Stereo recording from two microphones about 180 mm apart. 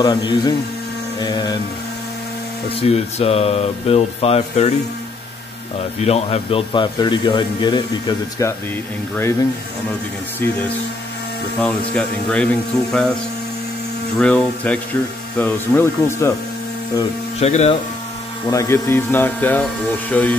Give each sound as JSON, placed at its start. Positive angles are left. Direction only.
{"t": 0.0, "sound": "speech", "side_deg": 20}
{"t": 2.9, "sound": "speech", "side_deg": 35}
{"t": 5.9, "sound": "speech", "side_deg": 35}
{"t": 10.4, "sound": "speech", "side_deg": 10}
{"t": 11.6, "sound": "speech", "side_deg": 5}
{"t": 17.4, "sound": "speech", "side_deg": 35}
{"t": 18.5, "sound": "speech", "side_deg": 15}